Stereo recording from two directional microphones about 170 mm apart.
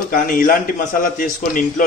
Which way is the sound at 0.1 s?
55° left (ahead or behind).